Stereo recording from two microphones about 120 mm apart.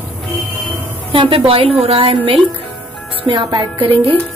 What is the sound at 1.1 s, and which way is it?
A woman's voice, 45° right (ahead or behind).